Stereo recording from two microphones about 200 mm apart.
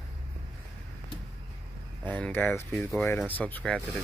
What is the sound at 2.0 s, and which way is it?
Speech, 10° left (ahead or behind).